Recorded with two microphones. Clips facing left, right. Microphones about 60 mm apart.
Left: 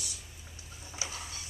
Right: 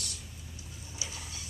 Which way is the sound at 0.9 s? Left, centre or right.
Left.